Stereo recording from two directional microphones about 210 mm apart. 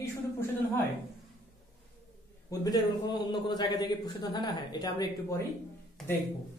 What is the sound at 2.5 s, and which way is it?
A man's voice, 20° left (ahead or behind).